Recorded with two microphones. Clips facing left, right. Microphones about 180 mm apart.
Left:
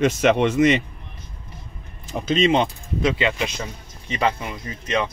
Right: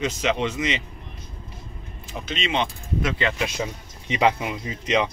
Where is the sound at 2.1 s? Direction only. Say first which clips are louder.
Left 9 dB; 45° left (ahead or behind).